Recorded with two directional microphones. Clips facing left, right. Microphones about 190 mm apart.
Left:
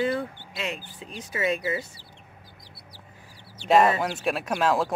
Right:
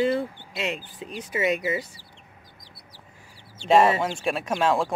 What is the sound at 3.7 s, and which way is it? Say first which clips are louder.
Speech: right 1 dB; centre (ahead or behind).